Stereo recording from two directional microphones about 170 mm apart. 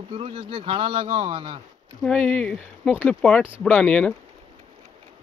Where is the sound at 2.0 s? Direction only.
5° left (ahead or behind).